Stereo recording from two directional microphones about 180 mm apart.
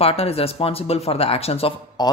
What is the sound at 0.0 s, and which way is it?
Speech, 30° left (ahead or behind).